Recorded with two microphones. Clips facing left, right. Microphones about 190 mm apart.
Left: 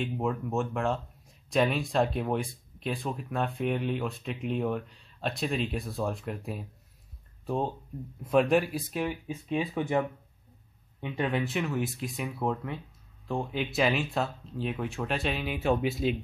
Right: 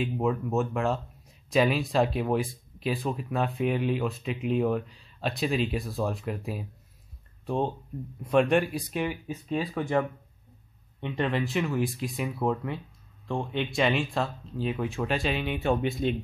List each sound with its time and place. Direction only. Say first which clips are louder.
0.0 s speech: right 3 dB; 5° right (ahead or behind)